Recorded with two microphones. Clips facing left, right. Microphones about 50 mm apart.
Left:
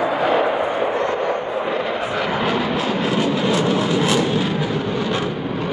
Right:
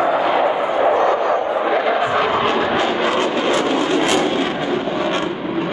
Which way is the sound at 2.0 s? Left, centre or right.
Right.